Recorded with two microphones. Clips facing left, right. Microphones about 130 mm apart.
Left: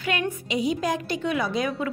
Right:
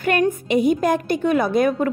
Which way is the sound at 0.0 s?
50° right (ahead or behind).